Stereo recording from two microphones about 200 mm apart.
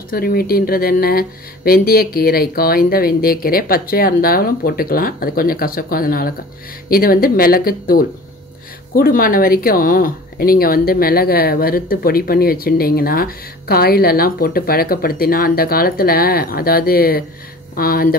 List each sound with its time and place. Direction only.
0.1 s speech: 50° left (ahead or behind)